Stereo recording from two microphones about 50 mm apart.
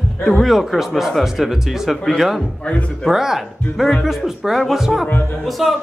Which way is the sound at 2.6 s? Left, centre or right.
Left.